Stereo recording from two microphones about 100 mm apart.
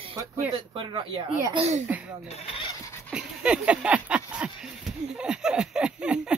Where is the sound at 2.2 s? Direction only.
80° left.